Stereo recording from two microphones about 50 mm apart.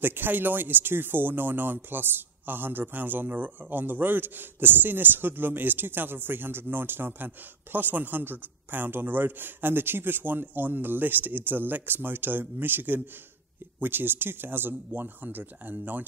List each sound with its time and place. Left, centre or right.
0.0 s speech: right